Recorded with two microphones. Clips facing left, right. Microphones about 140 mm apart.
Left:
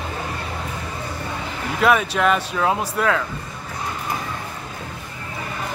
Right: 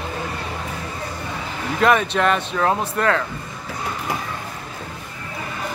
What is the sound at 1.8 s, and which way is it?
A man's voice, 5° left (ahead or behind).